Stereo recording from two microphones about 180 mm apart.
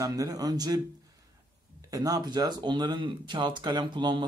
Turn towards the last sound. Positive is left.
turn(degrees=-25)  # may be behind; listen again after turning